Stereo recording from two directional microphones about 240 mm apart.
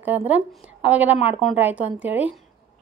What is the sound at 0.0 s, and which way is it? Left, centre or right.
A woman's voice, centre.